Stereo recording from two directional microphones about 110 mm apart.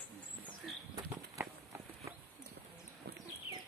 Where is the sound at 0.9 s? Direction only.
25° right (ahead or behind).